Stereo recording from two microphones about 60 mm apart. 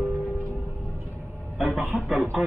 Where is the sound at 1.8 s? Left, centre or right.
Centre.